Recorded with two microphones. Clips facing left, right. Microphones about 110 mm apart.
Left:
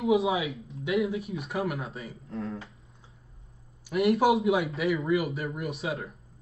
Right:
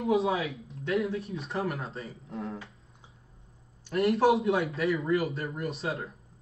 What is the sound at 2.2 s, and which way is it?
Speech, 20° right (ahead or behind).